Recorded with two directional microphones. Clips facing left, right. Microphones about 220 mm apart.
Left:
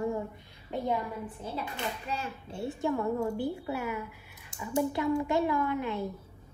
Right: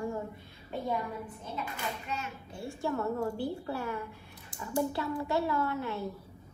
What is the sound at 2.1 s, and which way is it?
A woman's voice, 30° left (ahead or behind).